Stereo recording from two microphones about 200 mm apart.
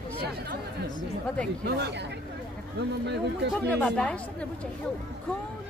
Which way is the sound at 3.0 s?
60° right (ahead or behind).